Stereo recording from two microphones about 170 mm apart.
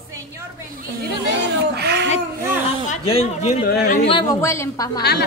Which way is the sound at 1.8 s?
80° right.